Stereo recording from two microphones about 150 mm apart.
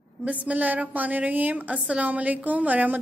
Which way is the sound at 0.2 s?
10° right (ahead or behind).